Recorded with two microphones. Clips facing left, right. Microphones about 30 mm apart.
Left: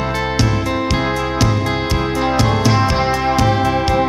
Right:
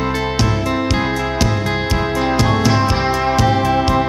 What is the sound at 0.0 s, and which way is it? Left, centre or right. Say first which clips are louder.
Music: even; centre.